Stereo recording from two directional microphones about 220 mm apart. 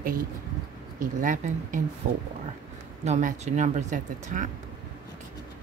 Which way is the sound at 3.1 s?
35° right (ahead or behind).